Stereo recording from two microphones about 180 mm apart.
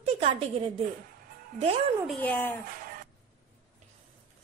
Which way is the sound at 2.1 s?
10° left (ahead or behind).